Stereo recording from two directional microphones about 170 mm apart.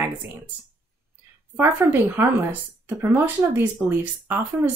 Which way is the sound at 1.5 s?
10° right (ahead or behind).